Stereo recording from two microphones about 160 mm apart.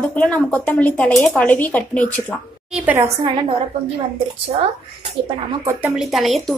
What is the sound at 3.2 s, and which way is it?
Speech, 35° right (ahead or behind).